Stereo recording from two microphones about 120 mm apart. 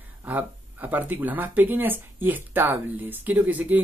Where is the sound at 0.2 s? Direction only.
15° right (ahead or behind).